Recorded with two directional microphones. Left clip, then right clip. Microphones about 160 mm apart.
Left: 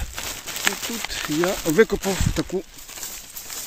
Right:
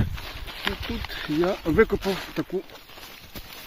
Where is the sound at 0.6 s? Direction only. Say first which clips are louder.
Left 5 dB; 40° left (ahead or behind).